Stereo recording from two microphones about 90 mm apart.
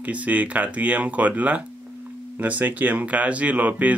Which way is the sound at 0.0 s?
15° right (ahead or behind).